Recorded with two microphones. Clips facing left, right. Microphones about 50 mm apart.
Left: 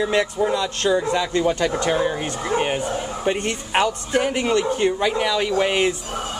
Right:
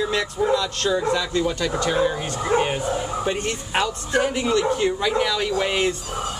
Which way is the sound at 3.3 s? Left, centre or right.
Left.